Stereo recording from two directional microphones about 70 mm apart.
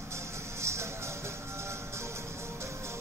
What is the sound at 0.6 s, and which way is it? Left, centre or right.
Music, right.